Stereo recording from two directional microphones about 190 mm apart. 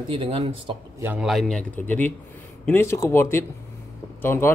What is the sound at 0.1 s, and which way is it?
Speech, 30° right (ahead or behind).